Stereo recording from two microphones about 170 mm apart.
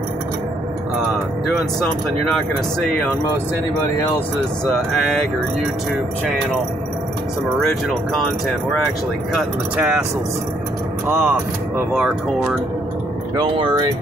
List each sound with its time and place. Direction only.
1.5 s speech: centre (ahead or behind)
9.3 s speech: 5° right (ahead or behind)
11.2 s speech: 5° right (ahead or behind)
13.4 s speech: 25° right (ahead or behind)